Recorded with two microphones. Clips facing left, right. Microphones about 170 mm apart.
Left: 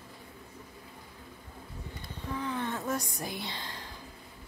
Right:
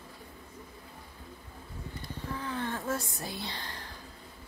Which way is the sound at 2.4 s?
20° left (ahead or behind).